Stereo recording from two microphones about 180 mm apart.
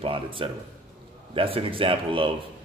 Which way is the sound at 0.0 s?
30° right (ahead or behind).